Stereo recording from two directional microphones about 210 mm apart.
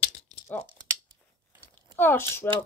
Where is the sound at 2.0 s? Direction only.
10° left (ahead or behind).